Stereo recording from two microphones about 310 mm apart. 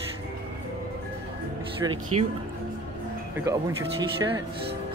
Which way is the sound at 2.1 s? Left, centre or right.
Centre.